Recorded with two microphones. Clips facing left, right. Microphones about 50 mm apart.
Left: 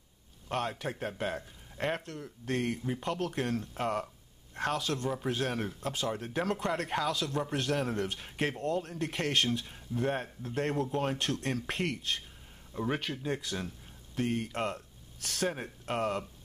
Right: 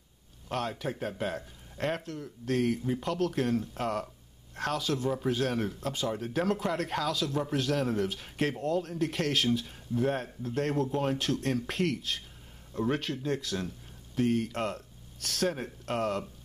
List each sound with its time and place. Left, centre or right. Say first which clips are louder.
0.5 s speech: right 1 dB; centre